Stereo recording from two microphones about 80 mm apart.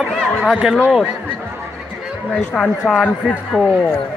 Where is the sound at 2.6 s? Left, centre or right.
Centre.